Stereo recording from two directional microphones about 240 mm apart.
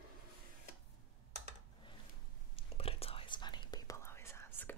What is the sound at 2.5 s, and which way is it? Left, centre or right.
Whispering, left.